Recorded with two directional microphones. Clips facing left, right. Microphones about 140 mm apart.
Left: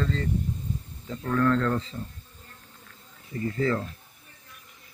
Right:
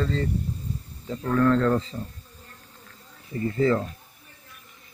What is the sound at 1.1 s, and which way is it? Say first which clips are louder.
Speech: right 3 dB; 35° right (ahead or behind).